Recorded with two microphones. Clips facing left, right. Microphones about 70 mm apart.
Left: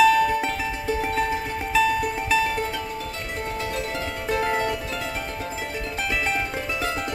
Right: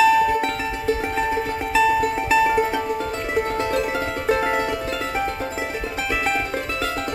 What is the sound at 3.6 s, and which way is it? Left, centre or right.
Music, right.